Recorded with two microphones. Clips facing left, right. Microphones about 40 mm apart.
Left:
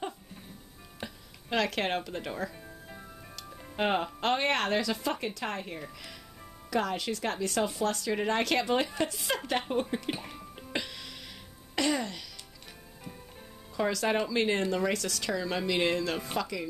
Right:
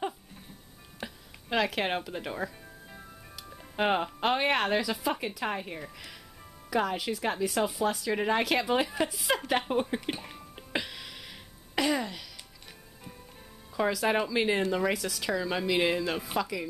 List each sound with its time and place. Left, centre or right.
1.0 s speech: centre
10.1 s speech: centre
10.5 s music: centre
13.7 s speech: centre